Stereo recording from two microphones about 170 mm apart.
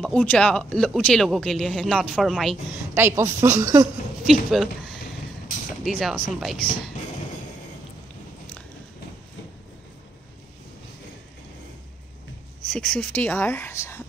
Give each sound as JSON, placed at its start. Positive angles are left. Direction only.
{"t": 0.0, "sound": "speech", "side_deg": 10}
{"t": 2.9, "sound": "a woman's voice", "side_deg": -15}
{"t": 4.3, "sound": "speech", "side_deg": 0}
{"t": 12.6, "sound": "speech", "side_deg": 5}